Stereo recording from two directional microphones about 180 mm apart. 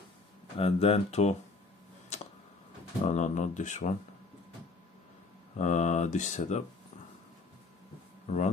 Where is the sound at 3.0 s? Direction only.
40° left (ahead or behind).